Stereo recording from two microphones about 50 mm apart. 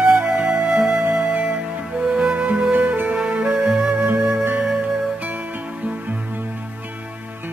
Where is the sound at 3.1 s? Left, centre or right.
Centre.